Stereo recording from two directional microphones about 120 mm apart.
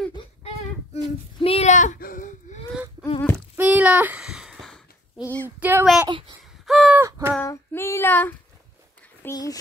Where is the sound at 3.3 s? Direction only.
15° right (ahead or behind).